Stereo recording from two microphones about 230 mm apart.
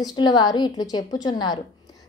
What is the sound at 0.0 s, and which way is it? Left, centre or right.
A woman's voice, centre.